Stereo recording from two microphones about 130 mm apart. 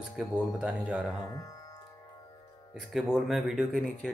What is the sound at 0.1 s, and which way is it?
Speech, 5° right (ahead or behind).